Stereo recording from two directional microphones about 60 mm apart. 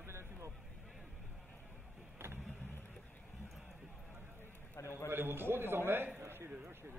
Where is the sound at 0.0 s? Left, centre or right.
Right.